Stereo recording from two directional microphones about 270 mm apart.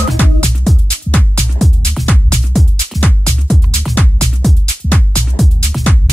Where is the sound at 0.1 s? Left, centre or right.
Centre.